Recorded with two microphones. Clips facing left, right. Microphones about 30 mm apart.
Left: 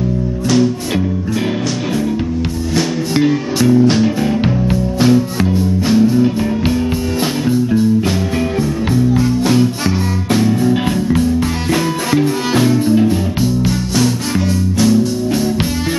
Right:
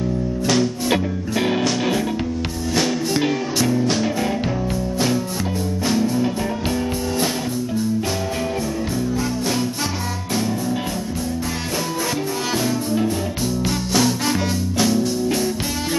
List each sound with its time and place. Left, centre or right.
0.5 s music: centre
2.7 s music: centre
5.9 s music: centre
9.1 s music: left
13.7 s music: centre